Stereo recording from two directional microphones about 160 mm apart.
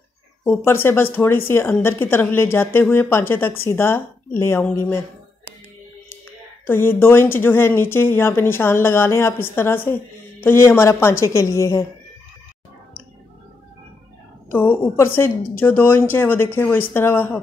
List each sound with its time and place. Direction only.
0.4 s a woman's voice: 10° left (ahead or behind)
6.7 s a woman's voice: 15° left (ahead or behind)
14.5 s a woman's voice: 15° left (ahead or behind)